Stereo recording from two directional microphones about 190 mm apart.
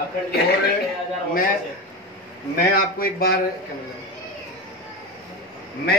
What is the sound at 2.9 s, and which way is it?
Speech, 50° left (ahead or behind).